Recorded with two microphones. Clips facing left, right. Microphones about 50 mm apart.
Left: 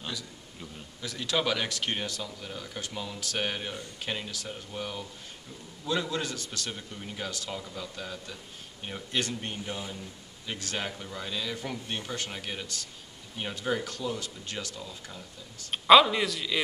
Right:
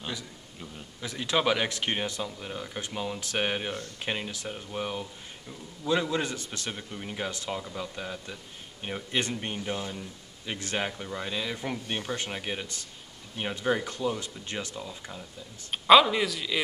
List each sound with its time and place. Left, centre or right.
1.0 s speech: right
15.7 s a man's voice: centre